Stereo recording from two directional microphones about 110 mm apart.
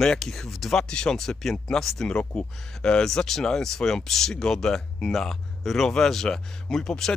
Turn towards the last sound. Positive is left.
turn(degrees=5)  # may be behind; listen again after turning